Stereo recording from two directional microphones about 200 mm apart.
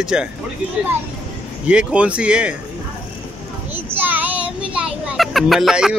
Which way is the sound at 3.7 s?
10° right (ahead or behind).